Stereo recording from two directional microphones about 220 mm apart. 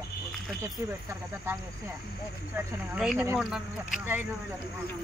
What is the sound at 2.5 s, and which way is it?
Speech, 5° right (ahead or behind).